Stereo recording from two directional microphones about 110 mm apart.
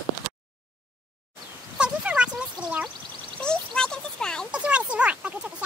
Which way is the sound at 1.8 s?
10° right (ahead or behind).